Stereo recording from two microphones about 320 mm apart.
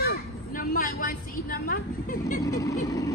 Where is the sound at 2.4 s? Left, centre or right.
Centre.